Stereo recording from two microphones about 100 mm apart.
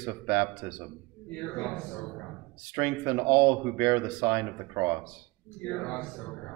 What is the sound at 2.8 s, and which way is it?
Speech, 20° right (ahead or behind).